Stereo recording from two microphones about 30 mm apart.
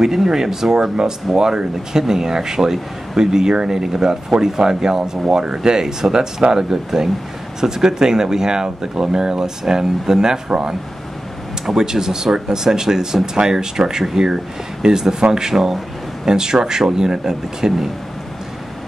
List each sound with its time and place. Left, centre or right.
0.0 s speech: centre
11.8 s speech: right
15.5 s speech: centre
16.3 s speech: right